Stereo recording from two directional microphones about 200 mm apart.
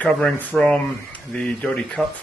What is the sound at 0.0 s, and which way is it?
A man's voice, 5° left (ahead or behind).